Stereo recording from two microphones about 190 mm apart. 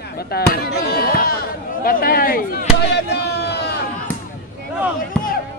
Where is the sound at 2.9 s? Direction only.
60° left (ahead or behind).